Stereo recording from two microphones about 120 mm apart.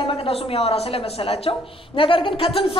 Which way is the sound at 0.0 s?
50° left (ahead or behind).